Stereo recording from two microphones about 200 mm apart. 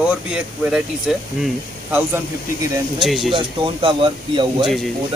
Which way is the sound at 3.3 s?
25° right (ahead or behind).